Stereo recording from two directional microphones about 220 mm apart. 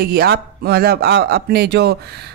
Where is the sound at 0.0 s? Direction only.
45° right (ahead or behind).